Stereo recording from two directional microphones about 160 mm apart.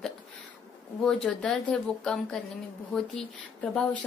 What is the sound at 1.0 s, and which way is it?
A woman's voice, 5° left (ahead or behind).